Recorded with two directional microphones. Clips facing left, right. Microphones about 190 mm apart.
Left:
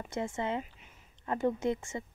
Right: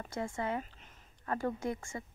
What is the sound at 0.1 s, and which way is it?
Speech, 20° left (ahead or behind).